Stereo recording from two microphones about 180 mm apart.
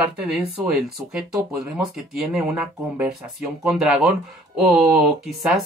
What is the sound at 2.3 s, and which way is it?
Speech, 10° right (ahead or behind).